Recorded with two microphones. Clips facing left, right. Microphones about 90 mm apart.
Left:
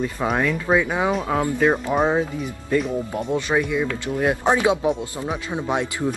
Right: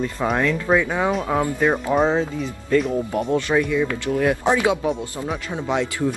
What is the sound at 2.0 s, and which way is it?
Speech, 15° left (ahead or behind).